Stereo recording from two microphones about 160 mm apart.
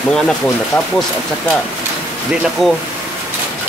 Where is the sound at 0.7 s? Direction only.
15° left (ahead or behind).